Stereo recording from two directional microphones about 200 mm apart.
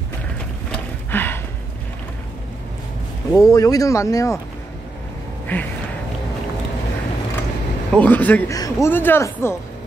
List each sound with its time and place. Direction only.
0.7 s a sound: 10° left (ahead or behind)
3.3 s speech: 15° left (ahead or behind)
5.5 s speech: 10° left (ahead or behind)
7.9 s speech: 5° left (ahead or behind)